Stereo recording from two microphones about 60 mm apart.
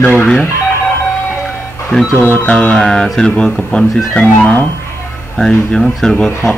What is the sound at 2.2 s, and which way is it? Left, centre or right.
Music, left.